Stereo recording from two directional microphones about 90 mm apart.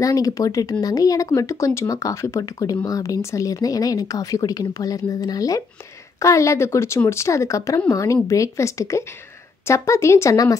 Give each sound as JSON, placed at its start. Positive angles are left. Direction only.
{"t": 0.0, "sound": "speech", "side_deg": 40}
{"t": 10.3, "sound": "speech", "side_deg": 40}